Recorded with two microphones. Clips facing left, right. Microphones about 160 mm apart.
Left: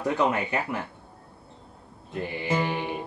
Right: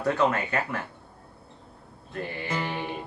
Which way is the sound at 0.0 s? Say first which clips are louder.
Even; 15° left (ahead or behind).